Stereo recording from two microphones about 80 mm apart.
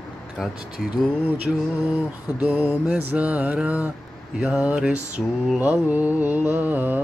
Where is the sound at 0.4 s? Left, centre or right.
Centre.